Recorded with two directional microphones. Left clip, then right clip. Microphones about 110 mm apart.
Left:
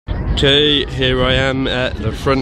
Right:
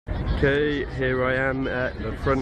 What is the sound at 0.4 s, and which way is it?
Speech, 30° left (ahead or behind).